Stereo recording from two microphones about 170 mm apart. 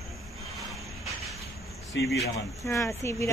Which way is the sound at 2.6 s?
20° left (ahead or behind).